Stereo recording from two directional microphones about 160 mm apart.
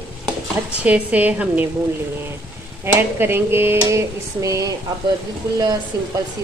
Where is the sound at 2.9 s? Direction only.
15° right (ahead or behind).